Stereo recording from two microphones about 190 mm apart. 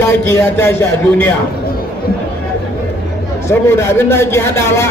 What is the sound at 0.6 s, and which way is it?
Speech, 10° left (ahead or behind).